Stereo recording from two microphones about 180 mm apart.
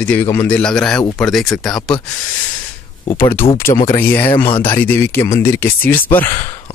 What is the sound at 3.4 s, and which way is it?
Speech, 30° left (ahead or behind).